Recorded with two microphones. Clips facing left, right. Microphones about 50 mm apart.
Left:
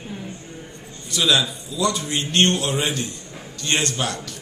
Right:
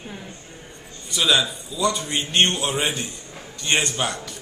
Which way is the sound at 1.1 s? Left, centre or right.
Centre.